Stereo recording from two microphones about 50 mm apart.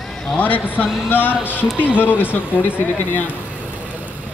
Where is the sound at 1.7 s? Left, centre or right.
Right.